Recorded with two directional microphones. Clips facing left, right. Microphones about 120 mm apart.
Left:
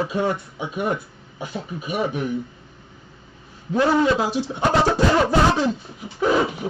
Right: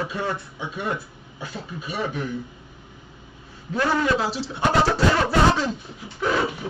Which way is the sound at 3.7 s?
20° left (ahead or behind).